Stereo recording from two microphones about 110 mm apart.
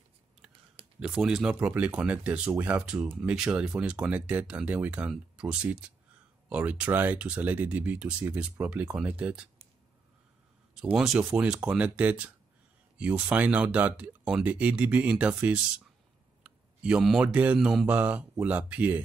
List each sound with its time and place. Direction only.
0.9 s speech: 5° right (ahead or behind)
10.7 s speech: 5° right (ahead or behind)
16.4 s a sound: 10° right (ahead or behind)
17.0 s speech: 5° right (ahead or behind)